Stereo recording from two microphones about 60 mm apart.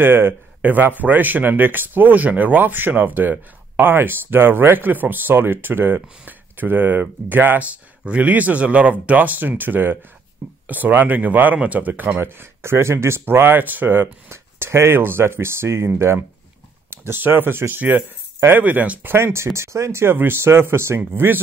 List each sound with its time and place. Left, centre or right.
0.0 s speech: right
12.3 s speech: right
19.0 s speech: right